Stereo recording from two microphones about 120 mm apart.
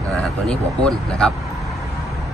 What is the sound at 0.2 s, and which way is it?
Speech, 5° left (ahead or behind).